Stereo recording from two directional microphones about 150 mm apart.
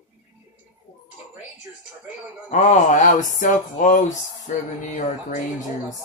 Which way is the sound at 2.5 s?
55° left (ahead or behind).